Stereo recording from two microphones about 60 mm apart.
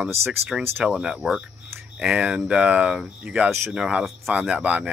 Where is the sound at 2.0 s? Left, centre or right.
Centre.